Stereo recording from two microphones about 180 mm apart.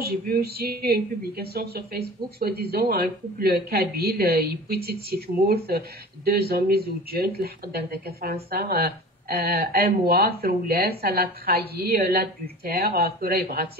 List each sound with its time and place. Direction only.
0.0 s speech: 55° right (ahead or behind)